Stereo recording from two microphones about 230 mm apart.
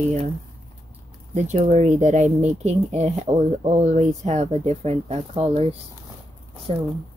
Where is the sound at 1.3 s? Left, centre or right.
Right.